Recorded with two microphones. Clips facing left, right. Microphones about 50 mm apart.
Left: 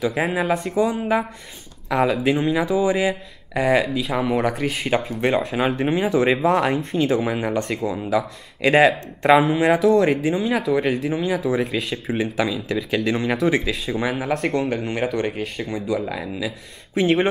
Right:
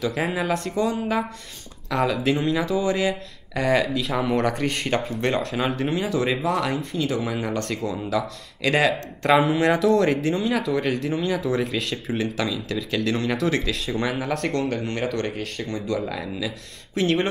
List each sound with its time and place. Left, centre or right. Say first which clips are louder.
0.0 s speech: left 3 dB; centre
8.6 s speech: left 5 dB; left
9.4 s speech: left 2 dB; centre